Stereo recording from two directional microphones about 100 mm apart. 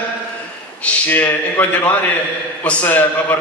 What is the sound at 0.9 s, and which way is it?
A man's voice, 20° left (ahead or behind).